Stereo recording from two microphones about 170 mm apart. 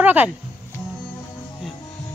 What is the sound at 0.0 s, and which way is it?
Speech, 10° right (ahead or behind).